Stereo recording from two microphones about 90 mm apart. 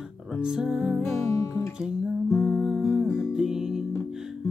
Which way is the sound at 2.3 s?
5° right (ahead or behind).